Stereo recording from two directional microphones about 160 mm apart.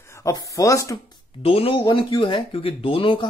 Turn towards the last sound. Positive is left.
turn(degrees=35)  # may be behind; listen again after turning